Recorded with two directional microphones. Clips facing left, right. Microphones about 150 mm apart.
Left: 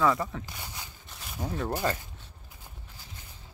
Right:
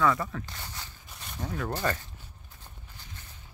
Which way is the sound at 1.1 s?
5° left (ahead or behind).